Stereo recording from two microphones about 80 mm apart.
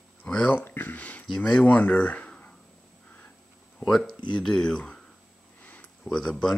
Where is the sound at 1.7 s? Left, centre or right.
Centre.